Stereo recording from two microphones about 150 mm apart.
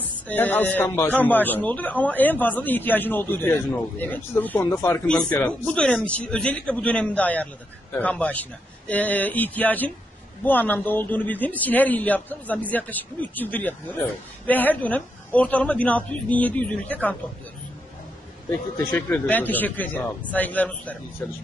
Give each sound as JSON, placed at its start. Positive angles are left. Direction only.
{"t": 0.3, "sound": "a man's voice", "side_deg": 10}
{"t": 18.9, "sound": "a man's voice", "side_deg": 10}